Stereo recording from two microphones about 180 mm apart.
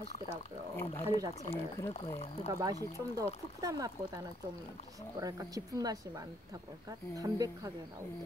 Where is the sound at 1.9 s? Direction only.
35° left (ahead or behind).